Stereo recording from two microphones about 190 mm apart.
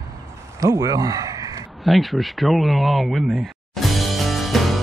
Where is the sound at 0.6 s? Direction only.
15° right (ahead or behind).